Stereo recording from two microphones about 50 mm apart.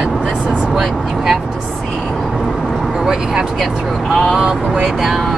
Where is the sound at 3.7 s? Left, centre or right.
Centre.